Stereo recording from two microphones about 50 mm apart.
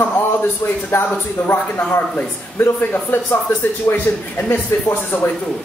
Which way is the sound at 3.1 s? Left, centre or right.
Left.